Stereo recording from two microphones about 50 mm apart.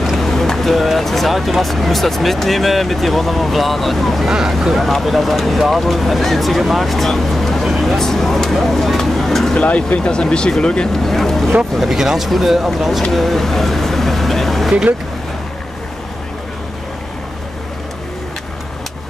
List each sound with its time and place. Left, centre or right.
0.1 s speech: centre
9.6 s speech: left
10.9 s speech: centre